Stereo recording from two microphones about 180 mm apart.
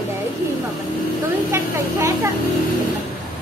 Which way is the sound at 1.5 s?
15° right (ahead or behind).